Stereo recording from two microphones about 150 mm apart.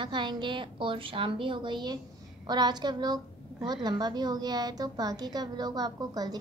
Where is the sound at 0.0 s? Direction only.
30° right (ahead or behind).